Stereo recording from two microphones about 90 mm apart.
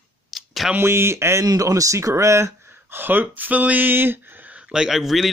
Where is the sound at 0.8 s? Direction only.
30° right (ahead or behind).